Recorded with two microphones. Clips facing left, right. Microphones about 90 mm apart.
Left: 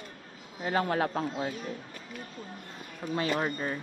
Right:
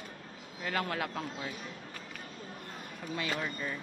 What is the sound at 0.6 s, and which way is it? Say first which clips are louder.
Speech: left 6 dB; 30° left (ahead or behind).